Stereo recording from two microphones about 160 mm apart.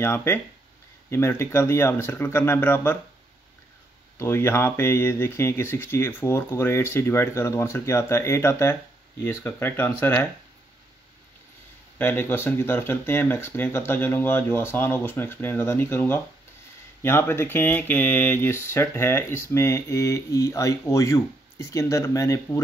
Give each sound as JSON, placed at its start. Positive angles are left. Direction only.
{"t": 0.0, "sound": "speech", "side_deg": 15}
{"t": 4.2, "sound": "speech", "side_deg": 15}
{"t": 12.0, "sound": "speech", "side_deg": 15}